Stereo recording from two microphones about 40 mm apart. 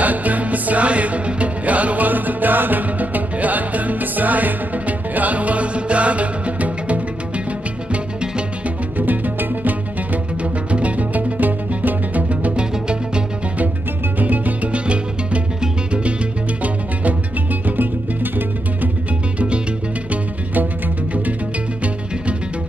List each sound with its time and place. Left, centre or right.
0.0 s music: right
8.9 s music: right
10.4 s music: right
12.5 s music: right
14.1 s music: right
14.7 s music: right
16.6 s music: right